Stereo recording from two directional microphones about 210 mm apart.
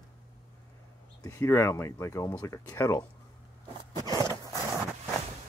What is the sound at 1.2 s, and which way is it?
Speech, 15° left (ahead or behind).